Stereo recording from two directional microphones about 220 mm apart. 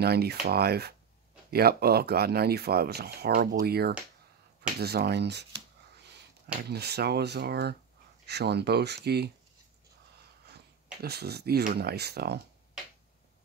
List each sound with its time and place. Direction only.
0.0 s speech: 45° right (ahead or behind)
6.7 s speech: 45° right (ahead or behind)
10.4 s speech: 45° right (ahead or behind)